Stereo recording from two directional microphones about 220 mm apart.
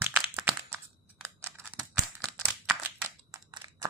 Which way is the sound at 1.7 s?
Centre (ahead or behind).